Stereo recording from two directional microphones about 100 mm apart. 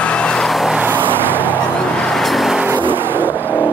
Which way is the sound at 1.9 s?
5° left (ahead or behind).